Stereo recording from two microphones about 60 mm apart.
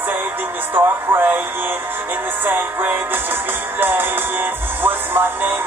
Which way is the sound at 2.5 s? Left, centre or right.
Right.